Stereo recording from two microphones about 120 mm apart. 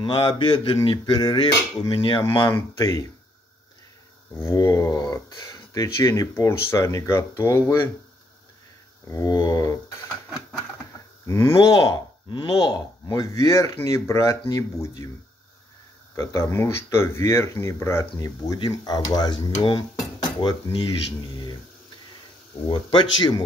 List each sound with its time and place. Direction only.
0.0 s speech: 45° left (ahead or behind)
2.5 s speech: 30° left (ahead or behind)
4.3 s speech: 20° left (ahead or behind)
9.0 s speech: 30° left (ahead or behind)
10.0 s a sound: 5° right (ahead or behind)
11.2 s speech: 25° left (ahead or behind)
16.2 s speech: 25° left (ahead or behind)
18.1 s speech: 35° left (ahead or behind)
22.7 s speech: 40° left (ahead or behind)